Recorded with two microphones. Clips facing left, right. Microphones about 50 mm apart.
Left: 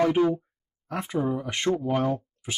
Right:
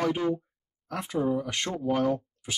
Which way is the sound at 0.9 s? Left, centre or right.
Centre.